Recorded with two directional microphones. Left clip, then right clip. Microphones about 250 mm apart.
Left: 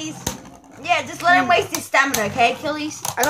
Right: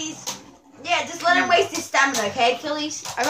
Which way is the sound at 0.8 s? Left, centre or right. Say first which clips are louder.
Left 3 dB; left.